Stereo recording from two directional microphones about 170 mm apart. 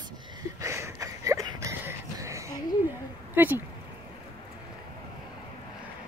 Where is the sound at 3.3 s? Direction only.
10° right (ahead or behind).